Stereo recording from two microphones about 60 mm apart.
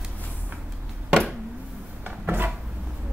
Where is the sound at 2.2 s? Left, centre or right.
Right.